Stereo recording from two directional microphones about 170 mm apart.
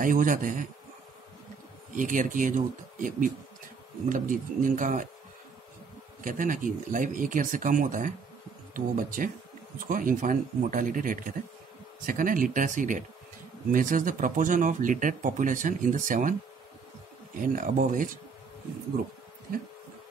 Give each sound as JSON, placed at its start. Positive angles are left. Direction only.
{"t": 0.0, "sound": "speech", "side_deg": -50}
{"t": 2.0, "sound": "speech", "side_deg": -50}
{"t": 6.2, "sound": "speech", "side_deg": -50}
{"t": 17.5, "sound": "speech", "side_deg": -50}